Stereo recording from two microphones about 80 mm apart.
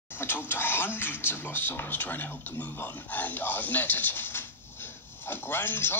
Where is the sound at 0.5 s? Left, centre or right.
Left.